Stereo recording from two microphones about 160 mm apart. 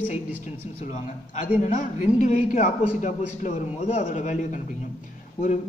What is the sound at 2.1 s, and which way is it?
A man's voice, 55° left (ahead or behind).